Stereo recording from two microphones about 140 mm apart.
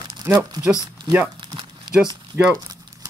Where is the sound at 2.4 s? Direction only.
15° right (ahead or behind).